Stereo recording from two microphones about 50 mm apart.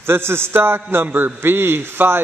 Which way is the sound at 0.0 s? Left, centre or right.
Right.